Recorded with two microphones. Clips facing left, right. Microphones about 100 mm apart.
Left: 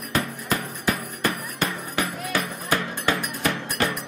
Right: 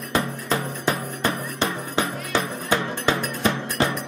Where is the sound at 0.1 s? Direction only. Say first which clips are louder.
Right 2 dB; 25° right (ahead or behind).